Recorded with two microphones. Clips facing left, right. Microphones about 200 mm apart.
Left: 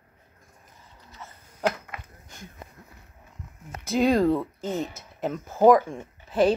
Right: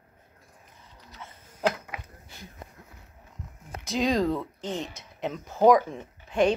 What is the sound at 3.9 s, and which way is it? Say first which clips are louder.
Speech: left 4 dB; 50° left (ahead or behind).